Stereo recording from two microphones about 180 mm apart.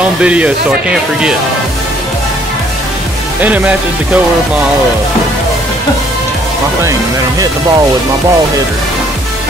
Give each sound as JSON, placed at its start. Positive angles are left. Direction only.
{"t": 0.2, "sound": "speech", "side_deg": -5}
{"t": 3.3, "sound": "speech", "side_deg": -10}
{"t": 6.8, "sound": "speech", "side_deg": -15}